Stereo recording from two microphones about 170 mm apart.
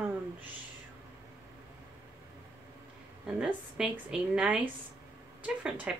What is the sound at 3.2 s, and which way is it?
A woman's voice, 5° right (ahead or behind).